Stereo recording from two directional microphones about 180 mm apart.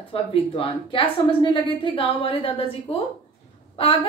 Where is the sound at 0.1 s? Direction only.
30° left (ahead or behind).